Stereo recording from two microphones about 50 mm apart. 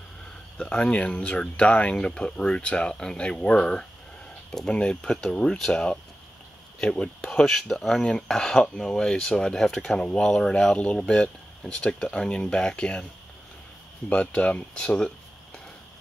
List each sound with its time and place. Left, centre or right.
0.6 s speech: left
5.1 s speech: centre
10.6 s speech: left
14.0 s speech: left